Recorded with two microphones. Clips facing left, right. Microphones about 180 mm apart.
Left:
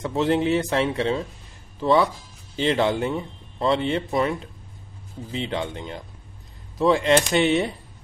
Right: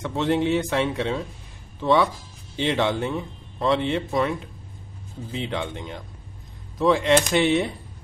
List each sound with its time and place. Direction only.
0.1 s speech: centre (ahead or behind)